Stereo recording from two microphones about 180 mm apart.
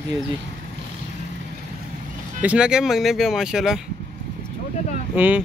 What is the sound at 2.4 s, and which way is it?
Speech, 5° right (ahead or behind).